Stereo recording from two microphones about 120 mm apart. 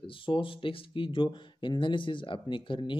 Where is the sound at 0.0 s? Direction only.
45° left (ahead or behind).